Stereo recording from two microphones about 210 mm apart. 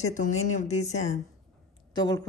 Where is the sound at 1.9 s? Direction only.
20° left (ahead or behind).